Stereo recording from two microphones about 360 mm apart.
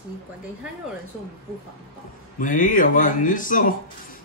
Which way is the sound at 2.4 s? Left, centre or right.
Left.